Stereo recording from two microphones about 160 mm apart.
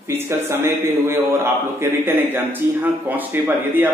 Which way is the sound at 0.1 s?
15° right (ahead or behind).